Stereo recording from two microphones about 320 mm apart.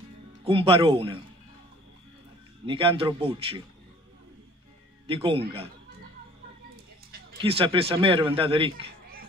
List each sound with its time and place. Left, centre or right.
0.4 s a man's voice: centre
2.6 s a man's voice: centre
5.0 s speech: centre
7.1 s music: right
7.5 s a man's voice: centre